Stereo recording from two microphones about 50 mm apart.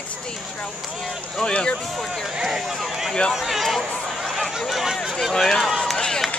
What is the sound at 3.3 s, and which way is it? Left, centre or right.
Speech, centre.